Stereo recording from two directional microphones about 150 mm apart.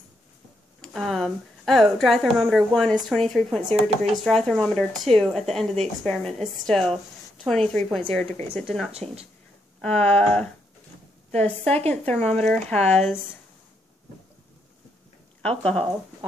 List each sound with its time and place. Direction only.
0.7 s speech: 5° left (ahead or behind)
8.9 s speech: 45° right (ahead or behind)
9.8 s a sound: 10° left (ahead or behind)
12.9 s speech: 5° left (ahead or behind)
15.4 s speech: 5° left (ahead or behind)